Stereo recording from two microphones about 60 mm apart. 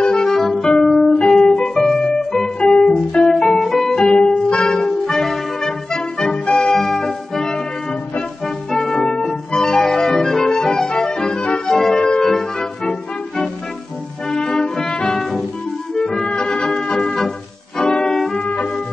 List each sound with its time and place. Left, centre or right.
0.0 s music: centre
4.0 s clarinet: centre
8.7 s music: centre
14.3 s brass instrument: centre
15.9 s music: centre
18.4 s music: centre